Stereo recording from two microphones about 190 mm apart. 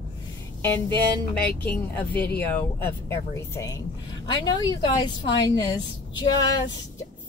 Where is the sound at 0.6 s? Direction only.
10° left (ahead or behind).